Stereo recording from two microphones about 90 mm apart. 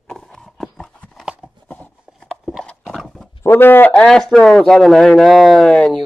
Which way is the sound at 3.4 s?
25° left (ahead or behind).